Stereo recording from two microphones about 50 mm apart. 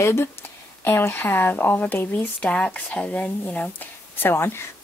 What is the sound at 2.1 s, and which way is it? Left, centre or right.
Speech, left.